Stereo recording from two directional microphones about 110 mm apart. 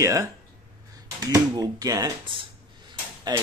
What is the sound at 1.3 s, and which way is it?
Speech, 35° right (ahead or behind).